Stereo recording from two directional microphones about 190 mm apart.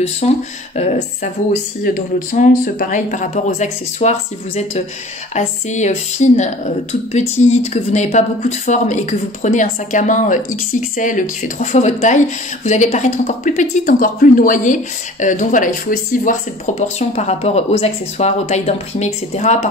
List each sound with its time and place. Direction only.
0.2 s speech: 35° left (ahead or behind)